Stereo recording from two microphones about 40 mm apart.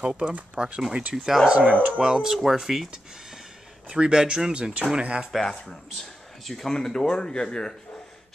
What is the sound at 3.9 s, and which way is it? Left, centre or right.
Speech, right.